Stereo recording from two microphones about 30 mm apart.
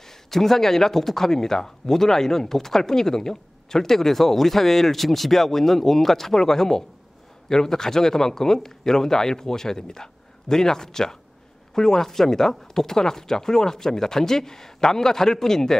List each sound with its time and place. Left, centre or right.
0.3 s speech: centre